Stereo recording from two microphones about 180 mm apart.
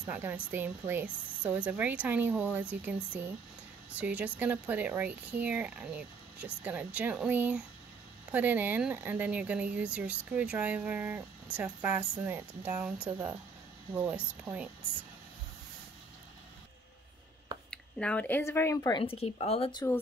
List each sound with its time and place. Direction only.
0.0 s speech: 10° right (ahead or behind)
17.6 s speech: 5° left (ahead or behind); by 19.9 s 30° left (ahead or behind)